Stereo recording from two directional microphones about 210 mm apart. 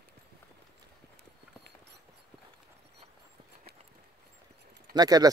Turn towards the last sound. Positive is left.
turn(degrees=-20)  # may be behind; listen again after turning